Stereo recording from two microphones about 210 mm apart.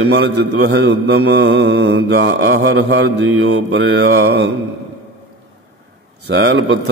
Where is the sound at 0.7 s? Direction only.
55° right (ahead or behind); by 4.2 s 75° right (ahead or behind).